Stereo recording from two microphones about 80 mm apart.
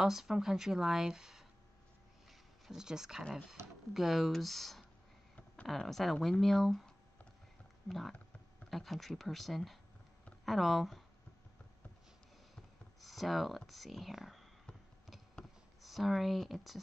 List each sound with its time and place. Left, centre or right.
0.0 s speech: centre
2.7 s speech: centre
3.6 s speech: right
3.9 s speech: centre
7.9 s speech: centre
13.0 s a sound: centre